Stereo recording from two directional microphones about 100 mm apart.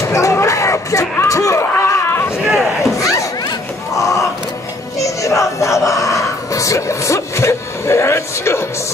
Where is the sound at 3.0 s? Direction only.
35° left (ahead or behind).